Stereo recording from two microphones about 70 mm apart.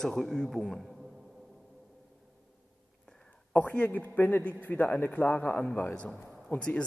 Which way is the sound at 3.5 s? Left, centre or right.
Left.